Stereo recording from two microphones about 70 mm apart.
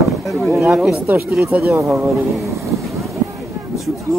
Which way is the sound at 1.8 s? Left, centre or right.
Right.